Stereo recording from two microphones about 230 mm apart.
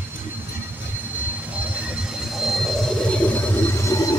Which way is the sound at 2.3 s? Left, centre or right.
Centre.